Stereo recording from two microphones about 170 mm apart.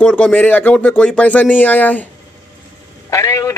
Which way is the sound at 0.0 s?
10° left (ahead or behind).